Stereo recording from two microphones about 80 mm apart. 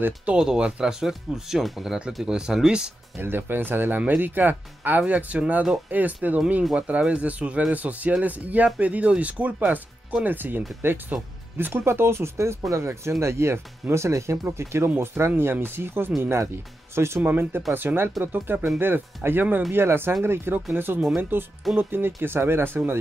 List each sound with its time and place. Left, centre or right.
0.0 s speech: centre
3.2 s speech: right